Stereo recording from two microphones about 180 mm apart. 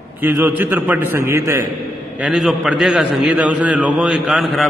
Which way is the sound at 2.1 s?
Centre (ahead or behind).